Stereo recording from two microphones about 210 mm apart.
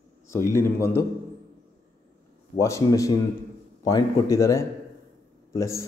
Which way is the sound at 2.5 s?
15° left (ahead or behind).